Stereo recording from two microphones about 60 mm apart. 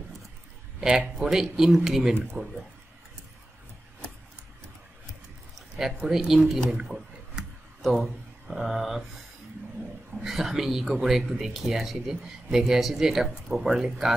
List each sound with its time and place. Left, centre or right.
0.7 s a sound: centre
1.2 s speech: centre
2.4 s speech: right
6.0 s speech: centre
6.7 s a sound: centre
7.8 s speech: centre
10.2 s speech: centre